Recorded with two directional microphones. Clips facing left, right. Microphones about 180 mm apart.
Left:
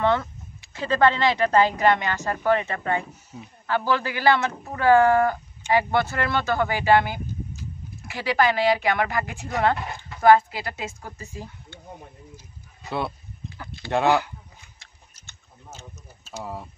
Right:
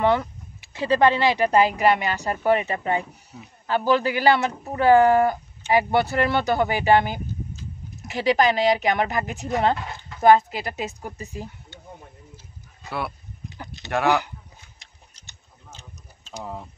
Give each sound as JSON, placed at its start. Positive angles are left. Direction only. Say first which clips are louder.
{"t": 0.0, "sound": "speech", "louder": "right 2 dB", "side_deg": -15}
{"t": 13.9, "sound": "speech", "louder": "left 1 dB", "side_deg": 20}